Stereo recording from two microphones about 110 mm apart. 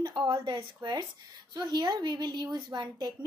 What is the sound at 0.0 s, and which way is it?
A woman's voice, 45° right (ahead or behind).